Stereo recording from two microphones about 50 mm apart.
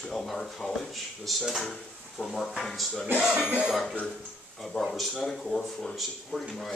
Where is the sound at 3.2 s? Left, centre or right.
Centre.